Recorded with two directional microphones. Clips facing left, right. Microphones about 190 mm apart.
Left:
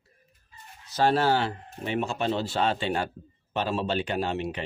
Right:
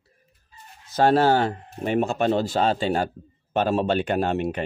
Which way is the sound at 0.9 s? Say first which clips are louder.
Right 5 dB; 45° right (ahead or behind).